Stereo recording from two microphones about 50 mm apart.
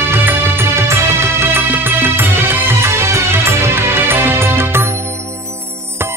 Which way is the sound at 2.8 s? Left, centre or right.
Right.